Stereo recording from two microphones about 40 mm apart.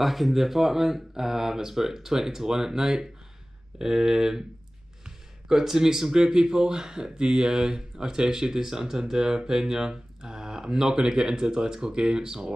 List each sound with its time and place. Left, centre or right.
0.0 s speech: centre